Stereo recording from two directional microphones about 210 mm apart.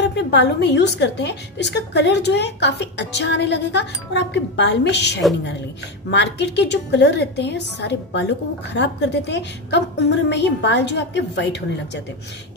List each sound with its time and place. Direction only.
0.0 s a woman's voice: 55° left (ahead or behind)